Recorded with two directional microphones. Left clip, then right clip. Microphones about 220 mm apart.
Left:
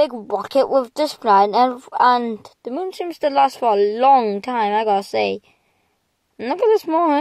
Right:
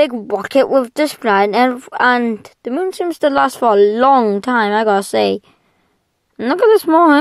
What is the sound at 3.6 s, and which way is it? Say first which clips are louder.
Speech: right 5 dB; 75° right (ahead or behind).